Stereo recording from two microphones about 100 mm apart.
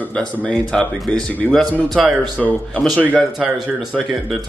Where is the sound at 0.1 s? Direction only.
10° left (ahead or behind).